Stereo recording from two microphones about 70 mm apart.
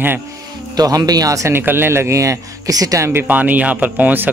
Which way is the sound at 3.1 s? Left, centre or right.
Right.